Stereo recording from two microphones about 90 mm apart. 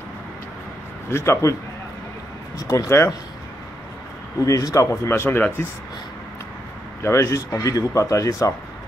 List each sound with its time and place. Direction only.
1.1 s speech: 30° left (ahead or behind)
2.6 s speech: 35° left (ahead or behind)
4.5 s speech: 40° left (ahead or behind)
7.0 s speech: 30° left (ahead or behind)